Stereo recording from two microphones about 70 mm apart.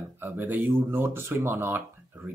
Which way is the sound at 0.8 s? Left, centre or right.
Right.